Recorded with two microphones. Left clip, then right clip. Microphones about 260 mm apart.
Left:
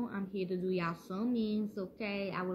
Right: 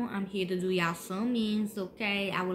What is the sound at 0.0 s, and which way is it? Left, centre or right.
A woman's voice, centre.